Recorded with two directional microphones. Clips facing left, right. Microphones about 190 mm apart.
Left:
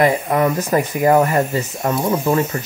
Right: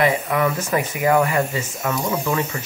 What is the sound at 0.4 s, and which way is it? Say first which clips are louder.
Speech: left 4 dB; 35° left (ahead or behind).